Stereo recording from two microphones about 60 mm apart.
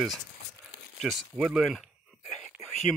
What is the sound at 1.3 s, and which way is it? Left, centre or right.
Speech, centre.